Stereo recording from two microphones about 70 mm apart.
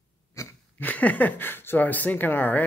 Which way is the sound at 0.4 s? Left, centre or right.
Left.